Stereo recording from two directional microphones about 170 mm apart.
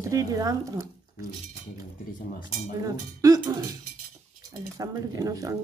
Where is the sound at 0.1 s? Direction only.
20° right (ahead or behind).